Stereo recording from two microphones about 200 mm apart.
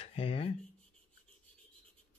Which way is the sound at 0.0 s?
30° left (ahead or behind).